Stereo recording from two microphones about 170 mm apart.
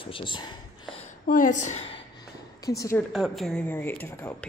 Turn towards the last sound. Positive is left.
turn(degrees=10)  # may be behind; listen again after turning